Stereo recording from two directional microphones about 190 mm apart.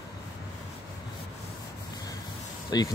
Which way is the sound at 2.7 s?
20° left (ahead or behind).